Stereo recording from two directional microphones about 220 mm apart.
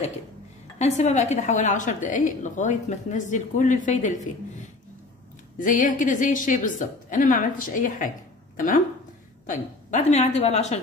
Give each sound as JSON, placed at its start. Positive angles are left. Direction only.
{"t": 0.7, "sound": "a woman's voice", "side_deg": 30}
{"t": 5.6, "sound": "a woman's voice", "side_deg": 35}